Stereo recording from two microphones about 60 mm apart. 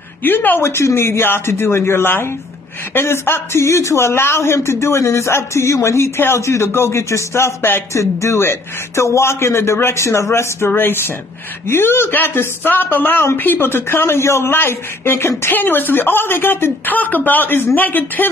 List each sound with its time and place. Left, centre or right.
0.2 s speech: left
0.6 s speech: left
7.9 s speech: left
10.7 s speech: left
15.5 s speech: left